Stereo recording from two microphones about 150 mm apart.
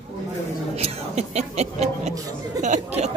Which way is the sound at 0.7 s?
45° right (ahead or behind).